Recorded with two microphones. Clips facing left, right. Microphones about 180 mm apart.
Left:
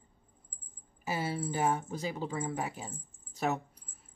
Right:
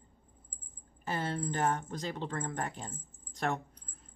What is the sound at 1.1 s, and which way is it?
Speech, 10° left (ahead or behind).